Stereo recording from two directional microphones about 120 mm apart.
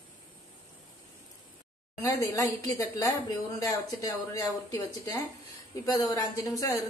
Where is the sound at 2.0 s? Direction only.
25° left (ahead or behind).